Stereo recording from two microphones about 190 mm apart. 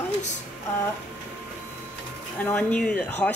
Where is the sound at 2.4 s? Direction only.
5° left (ahead or behind).